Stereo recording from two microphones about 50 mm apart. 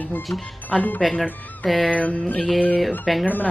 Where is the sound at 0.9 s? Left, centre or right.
Centre.